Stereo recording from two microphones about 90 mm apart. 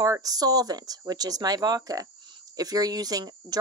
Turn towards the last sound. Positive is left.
turn(degrees=-45)  # may be behind; listen again after turning